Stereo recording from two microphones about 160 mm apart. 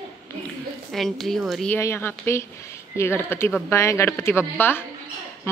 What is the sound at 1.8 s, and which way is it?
Speech, 15° left (ahead or behind).